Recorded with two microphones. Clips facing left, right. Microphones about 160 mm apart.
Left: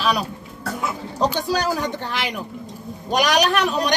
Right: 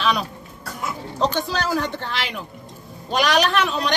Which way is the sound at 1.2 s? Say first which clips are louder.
Left 2 dB; 10° left (ahead or behind).